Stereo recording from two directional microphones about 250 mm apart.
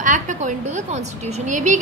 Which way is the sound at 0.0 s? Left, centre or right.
Right.